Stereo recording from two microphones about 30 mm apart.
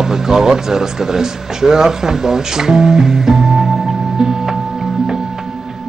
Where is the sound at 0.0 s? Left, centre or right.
Centre.